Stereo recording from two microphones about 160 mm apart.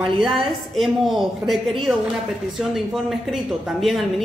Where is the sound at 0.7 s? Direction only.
Centre (ahead or behind).